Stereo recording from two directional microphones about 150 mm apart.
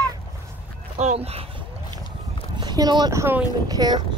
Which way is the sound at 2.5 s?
30° right (ahead or behind).